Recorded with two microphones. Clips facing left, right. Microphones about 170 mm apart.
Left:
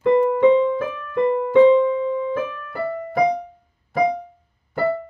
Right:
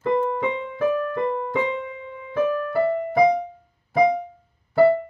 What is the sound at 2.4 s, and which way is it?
Keyboard, 40° right (ahead or behind).